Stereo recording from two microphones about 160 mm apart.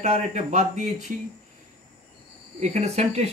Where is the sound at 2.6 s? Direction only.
45° right (ahead or behind).